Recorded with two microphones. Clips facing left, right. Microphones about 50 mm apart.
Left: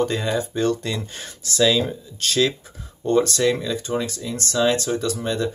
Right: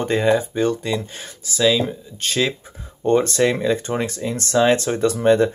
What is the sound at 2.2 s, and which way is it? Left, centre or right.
Speech, right.